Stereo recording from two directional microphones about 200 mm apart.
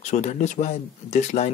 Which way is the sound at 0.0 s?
35° left (ahead or behind).